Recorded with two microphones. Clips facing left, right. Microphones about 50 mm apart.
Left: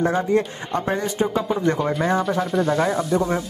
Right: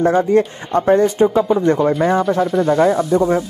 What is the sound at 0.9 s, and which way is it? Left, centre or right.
Speech, right.